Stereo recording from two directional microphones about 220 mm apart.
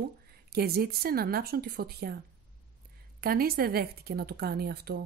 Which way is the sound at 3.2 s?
45° right (ahead or behind).